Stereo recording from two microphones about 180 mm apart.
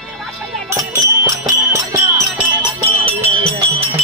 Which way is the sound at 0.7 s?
20° right (ahead or behind).